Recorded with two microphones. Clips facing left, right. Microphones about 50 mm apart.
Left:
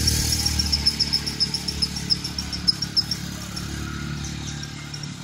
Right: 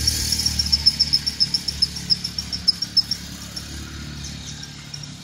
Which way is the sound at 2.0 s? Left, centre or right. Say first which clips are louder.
Even; centre.